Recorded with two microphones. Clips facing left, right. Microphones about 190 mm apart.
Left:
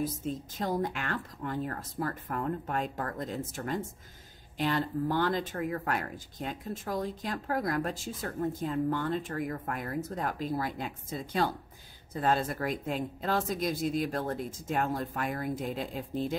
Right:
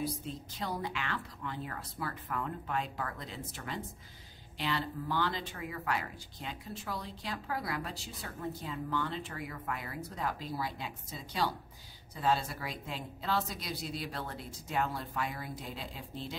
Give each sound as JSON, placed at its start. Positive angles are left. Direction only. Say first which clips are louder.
{"t": 0.0, "sound": "speech", "louder": "left 5 dB", "side_deg": 45}